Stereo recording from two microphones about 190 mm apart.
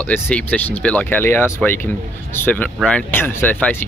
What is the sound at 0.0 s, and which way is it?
Speech, 10° left (ahead or behind).